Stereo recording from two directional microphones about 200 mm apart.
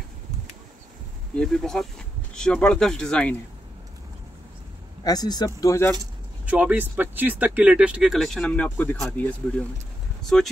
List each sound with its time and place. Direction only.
1.3 s speech: 5° left (ahead or behind)
5.0 s speech: 20° left (ahead or behind)
6.4 s speech: 10° right (ahead or behind)